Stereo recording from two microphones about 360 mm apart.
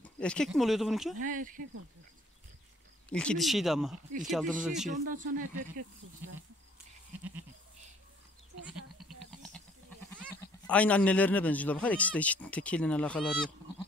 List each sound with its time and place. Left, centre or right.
0.0 s speech: centre
1.1 s speech: right
3.1 s speech: centre
4.8 s speech: right
9.3 s goat: centre
10.3 s speech: centre